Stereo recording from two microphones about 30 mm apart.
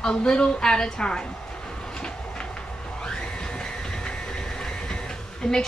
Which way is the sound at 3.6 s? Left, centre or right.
Left.